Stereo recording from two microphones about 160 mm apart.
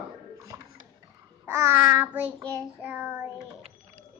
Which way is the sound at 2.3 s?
25° right (ahead or behind).